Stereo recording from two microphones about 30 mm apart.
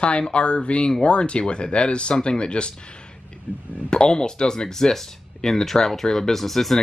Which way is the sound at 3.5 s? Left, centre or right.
Left.